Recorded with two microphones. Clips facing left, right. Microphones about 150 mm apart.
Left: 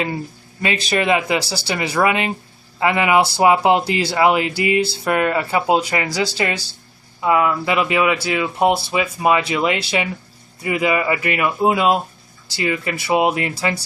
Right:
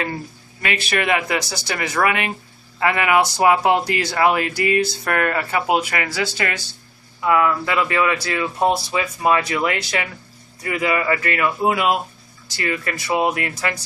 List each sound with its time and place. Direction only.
0.0 s speech: 20° left (ahead or behind)
7.2 s speech: 20° left (ahead or behind)